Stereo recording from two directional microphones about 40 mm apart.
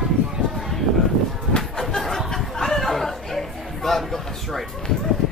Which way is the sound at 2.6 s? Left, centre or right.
Centre.